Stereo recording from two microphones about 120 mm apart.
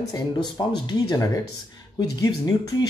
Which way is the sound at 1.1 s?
30° left (ahead or behind).